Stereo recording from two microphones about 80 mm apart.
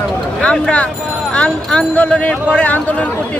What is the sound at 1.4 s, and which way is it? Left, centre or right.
Speech, centre.